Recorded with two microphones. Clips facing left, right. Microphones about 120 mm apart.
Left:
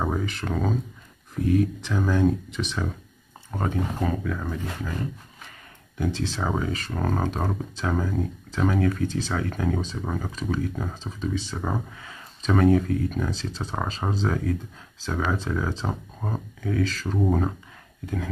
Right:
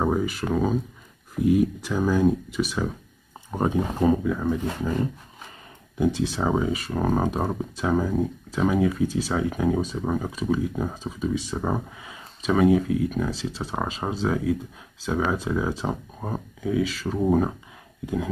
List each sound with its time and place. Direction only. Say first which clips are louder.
0.0 s speech: right 4 dB; 10° right (ahead or behind)
3.5 s speech: right 4 dB; 20° right (ahead or behind)
5.9 s speech: right 4 dB; 15° right (ahead or behind)